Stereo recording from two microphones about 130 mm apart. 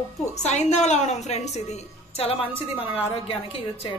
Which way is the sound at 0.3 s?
60° left (ahead or behind).